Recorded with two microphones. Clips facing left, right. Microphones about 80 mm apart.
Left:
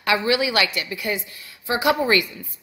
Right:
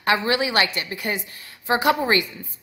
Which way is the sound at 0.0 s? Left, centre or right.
Right.